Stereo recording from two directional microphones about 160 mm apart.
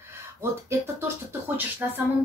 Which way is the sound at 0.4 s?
15° right (ahead or behind).